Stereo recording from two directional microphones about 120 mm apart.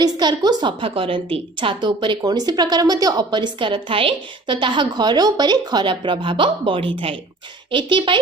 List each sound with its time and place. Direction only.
0.0 s a woman's voice: 35° right (ahead or behind)